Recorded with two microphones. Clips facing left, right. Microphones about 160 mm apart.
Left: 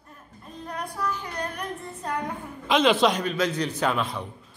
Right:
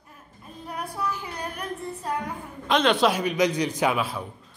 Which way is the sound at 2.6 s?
Centre (ahead or behind).